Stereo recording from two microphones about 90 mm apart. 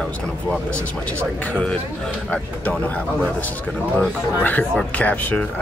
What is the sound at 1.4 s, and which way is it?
Speech, 15° left (ahead or behind).